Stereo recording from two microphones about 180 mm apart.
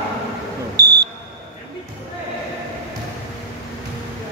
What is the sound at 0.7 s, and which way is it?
Smoke detector, 20° right (ahead or behind).